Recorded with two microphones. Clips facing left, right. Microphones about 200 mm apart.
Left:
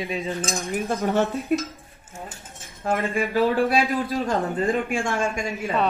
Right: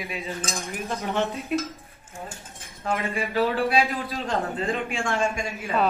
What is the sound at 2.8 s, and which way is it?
A man's voice, 50° left (ahead or behind).